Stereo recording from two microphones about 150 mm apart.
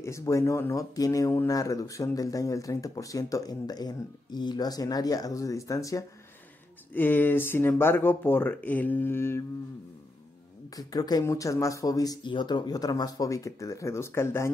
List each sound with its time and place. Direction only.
0.0 s speech: 20° left (ahead or behind)
10.8 s speech: 25° left (ahead or behind)